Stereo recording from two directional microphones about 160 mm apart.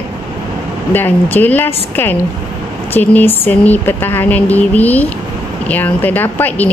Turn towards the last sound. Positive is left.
turn(degrees=10)  # may be behind; listen again after turning